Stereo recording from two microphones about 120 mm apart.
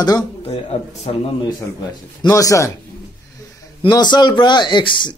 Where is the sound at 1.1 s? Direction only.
60° left (ahead or behind).